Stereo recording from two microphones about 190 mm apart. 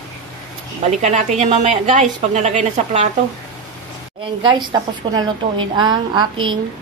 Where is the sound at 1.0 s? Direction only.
40° right (ahead or behind).